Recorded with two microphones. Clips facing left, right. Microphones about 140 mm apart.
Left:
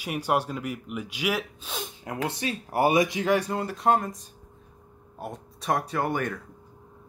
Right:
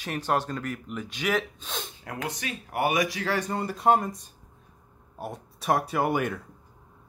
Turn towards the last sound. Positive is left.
turn(degrees=-10)  # may be behind; listen again after turning